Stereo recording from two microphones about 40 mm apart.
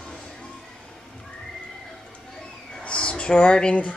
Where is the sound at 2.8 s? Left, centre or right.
Left.